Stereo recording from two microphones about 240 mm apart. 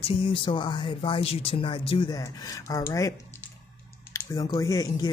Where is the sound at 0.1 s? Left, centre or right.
Left.